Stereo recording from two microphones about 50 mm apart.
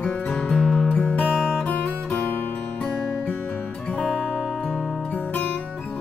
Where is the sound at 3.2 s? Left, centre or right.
Left.